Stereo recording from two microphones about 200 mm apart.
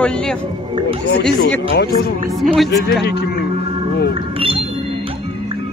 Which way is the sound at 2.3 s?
Centre (ahead or behind).